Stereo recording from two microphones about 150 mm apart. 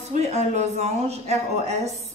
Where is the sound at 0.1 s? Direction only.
50° right (ahead or behind).